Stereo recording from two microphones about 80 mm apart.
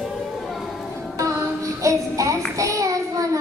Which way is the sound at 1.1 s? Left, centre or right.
Right.